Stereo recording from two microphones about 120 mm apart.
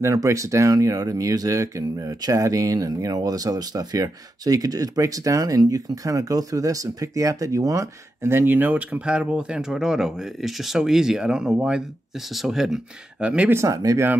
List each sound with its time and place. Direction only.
0.0 s speech: 25° right (ahead or behind); by 13.5 s 10° right (ahead or behind)
13.5 s speech: 25° right (ahead or behind)